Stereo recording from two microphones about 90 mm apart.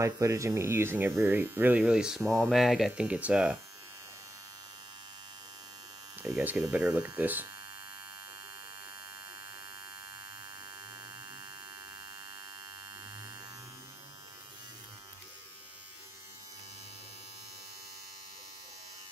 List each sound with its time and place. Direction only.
0.0 s speech: 35° right (ahead or behind); by 3.1 s centre (ahead or behind)
3.1 s speech: 15° right (ahead or behind)
6.3 s speech: 15° right (ahead or behind)